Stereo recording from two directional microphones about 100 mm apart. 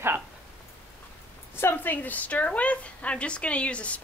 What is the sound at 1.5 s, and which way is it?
A woman's voice, 20° left (ahead or behind).